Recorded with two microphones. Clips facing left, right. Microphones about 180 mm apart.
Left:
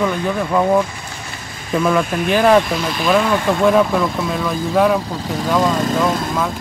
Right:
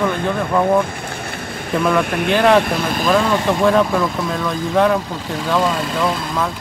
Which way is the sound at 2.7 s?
50° right (ahead or behind).